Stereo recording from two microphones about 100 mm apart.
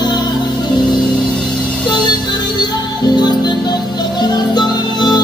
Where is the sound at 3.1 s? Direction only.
45° left (ahead or behind).